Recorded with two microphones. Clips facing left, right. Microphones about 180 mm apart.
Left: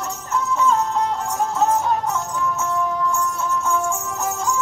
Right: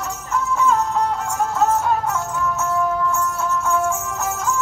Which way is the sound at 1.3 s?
10° left (ahead or behind).